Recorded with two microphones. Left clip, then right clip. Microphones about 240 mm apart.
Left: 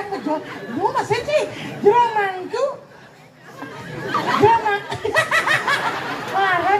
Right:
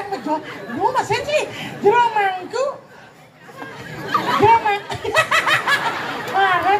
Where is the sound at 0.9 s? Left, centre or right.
Right.